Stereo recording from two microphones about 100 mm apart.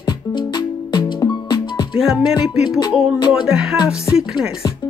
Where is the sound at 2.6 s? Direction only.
40° left (ahead or behind).